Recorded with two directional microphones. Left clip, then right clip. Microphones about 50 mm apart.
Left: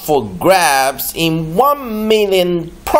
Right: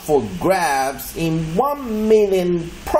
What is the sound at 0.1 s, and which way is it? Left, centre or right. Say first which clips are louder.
Speech: left 6 dB; left.